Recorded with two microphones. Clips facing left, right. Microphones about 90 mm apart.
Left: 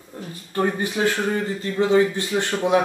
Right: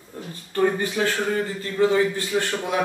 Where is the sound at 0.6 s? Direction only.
20° left (ahead or behind).